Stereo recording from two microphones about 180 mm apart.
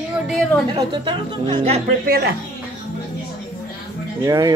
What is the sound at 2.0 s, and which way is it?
Speech, 60° right (ahead or behind).